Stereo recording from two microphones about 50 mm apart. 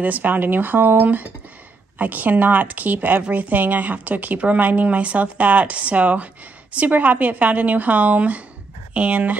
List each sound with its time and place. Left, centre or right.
0.0 s speech: right